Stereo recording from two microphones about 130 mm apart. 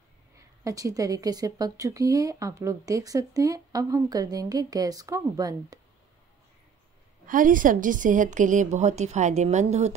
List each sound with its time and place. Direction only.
0.7 s speech: 25° right (ahead or behind)
7.2 s a woman's voice: 90° right; by 9.9 s 60° right (ahead or behind)